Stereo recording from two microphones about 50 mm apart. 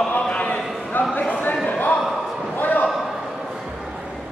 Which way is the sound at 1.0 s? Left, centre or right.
Left.